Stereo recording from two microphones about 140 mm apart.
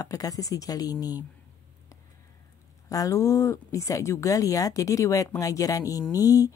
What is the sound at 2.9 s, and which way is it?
Speech, 25° left (ahead or behind).